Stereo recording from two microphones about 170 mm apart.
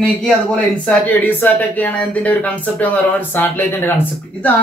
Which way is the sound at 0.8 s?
10° left (ahead or behind).